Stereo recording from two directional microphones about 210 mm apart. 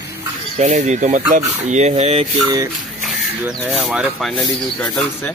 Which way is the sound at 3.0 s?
5° right (ahead or behind).